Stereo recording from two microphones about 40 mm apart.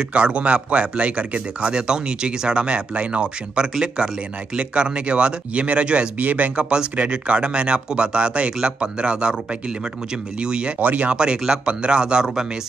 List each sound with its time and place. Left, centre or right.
0.1 s a man's voice: right
10.4 s a man's voice: right
10.8 s speech: right
11.1 s a man's voice: right